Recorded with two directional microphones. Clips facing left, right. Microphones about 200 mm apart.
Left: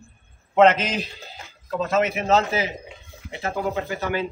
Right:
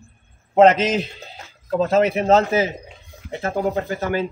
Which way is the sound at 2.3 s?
50° right (ahead or behind).